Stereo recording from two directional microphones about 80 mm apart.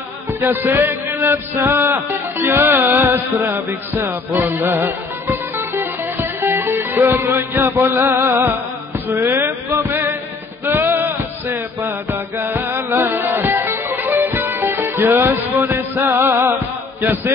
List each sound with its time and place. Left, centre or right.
0.5 s music: right
9.1 s a sound: right
10.6 s music: right